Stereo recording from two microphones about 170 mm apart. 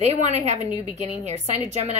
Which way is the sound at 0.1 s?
40° right (ahead or behind).